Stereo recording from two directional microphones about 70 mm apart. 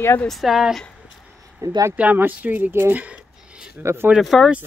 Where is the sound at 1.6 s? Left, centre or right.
Right.